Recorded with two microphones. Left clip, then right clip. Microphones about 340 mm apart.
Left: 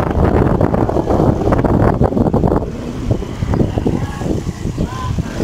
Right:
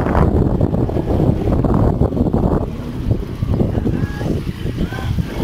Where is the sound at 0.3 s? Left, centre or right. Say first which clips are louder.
Left 5 dB; left.